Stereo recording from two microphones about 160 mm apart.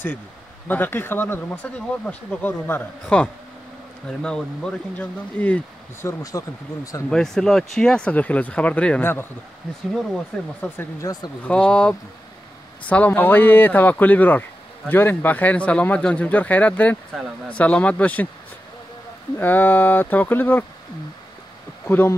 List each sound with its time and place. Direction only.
0.7 s speech: 15° left (ahead or behind)
6.0 s speech: 20° left (ahead or behind)
7.1 s speech: 5° left (ahead or behind)
10.6 s speech: 15° left (ahead or behind)
11.5 s speech: 5° left (ahead or behind)
19.3 s speech: 10° left (ahead or behind)
21.8 s speech: 15° left (ahead or behind)